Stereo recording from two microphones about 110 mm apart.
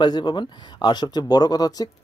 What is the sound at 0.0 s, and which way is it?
Speech, 40° left (ahead or behind).